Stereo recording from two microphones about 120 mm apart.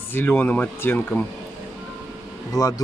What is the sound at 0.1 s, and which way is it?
Speech, 15° left (ahead or behind).